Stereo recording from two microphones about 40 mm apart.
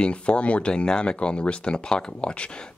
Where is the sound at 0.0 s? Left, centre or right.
Left.